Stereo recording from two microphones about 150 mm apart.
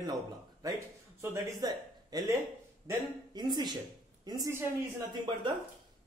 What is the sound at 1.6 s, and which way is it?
Speech, 25° right (ahead or behind).